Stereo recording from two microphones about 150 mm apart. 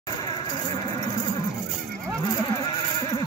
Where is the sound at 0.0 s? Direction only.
25° left (ahead or behind).